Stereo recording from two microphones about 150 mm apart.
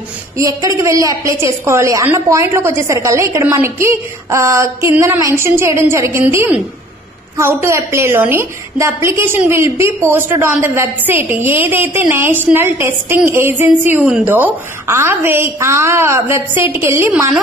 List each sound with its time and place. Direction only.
0.4 s a woman's voice: 20° right (ahead or behind)